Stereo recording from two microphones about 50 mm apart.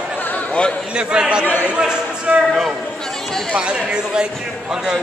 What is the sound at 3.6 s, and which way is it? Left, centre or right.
Speech, centre.